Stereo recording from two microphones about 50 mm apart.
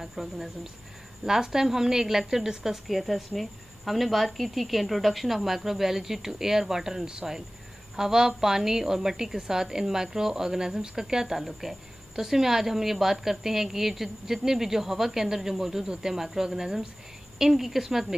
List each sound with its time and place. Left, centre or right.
0.0 s a woman's voice: centre